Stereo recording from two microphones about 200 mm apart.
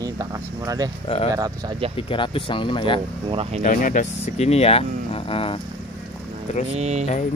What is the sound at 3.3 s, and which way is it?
Speech, 30° right (ahead or behind).